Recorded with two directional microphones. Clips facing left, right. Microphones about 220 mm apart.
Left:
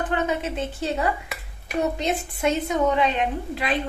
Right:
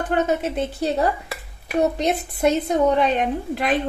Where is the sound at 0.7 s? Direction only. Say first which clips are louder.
Right 3 dB; 35° right (ahead or behind).